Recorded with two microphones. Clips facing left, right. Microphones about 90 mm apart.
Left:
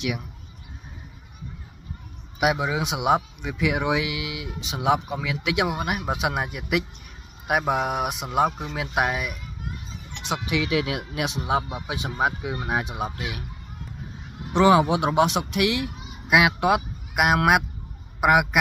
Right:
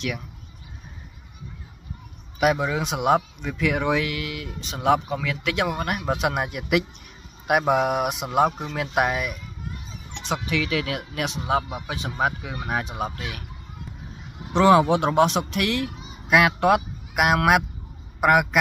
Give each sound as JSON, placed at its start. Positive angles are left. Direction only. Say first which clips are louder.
{"t": 2.4, "sound": "speech", "louder": "right 1 dB", "side_deg": 10}
{"t": 10.2, "sound": "speech", "louder": "even", "side_deg": 15}
{"t": 14.5, "sound": "speech", "louder": "right 1 dB", "side_deg": 5}